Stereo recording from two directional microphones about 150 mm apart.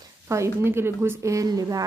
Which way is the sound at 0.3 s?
15° right (ahead or behind).